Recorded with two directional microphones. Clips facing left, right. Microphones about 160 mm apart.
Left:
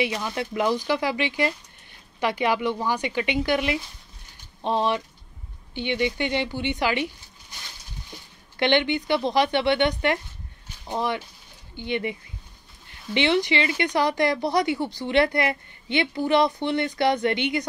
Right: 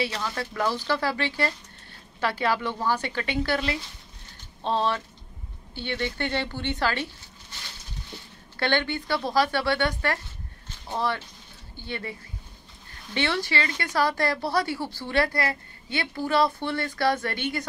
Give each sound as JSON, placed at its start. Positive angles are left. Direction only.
{"t": 0.0, "sound": "speech", "side_deg": 15}
{"t": 8.1, "sound": "a sound", "side_deg": 15}
{"t": 8.5, "sound": "speech", "side_deg": 20}